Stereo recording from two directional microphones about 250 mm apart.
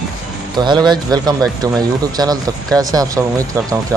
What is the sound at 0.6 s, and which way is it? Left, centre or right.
Speech, centre.